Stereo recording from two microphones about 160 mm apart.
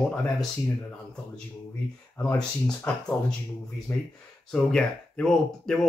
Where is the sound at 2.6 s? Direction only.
5° left (ahead or behind).